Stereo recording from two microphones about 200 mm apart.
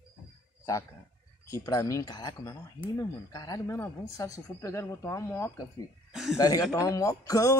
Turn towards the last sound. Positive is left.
turn(degrees=15)  # may be behind; listen again after turning